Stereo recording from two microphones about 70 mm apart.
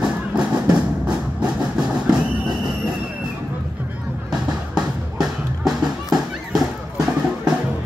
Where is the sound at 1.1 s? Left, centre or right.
Centre.